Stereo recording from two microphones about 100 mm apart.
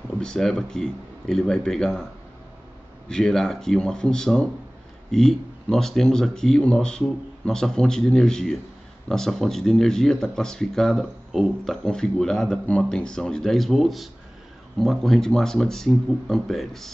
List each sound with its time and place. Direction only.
0.2 s speech: 5° left (ahead or behind)
3.1 s a man's voice: 5° left (ahead or behind)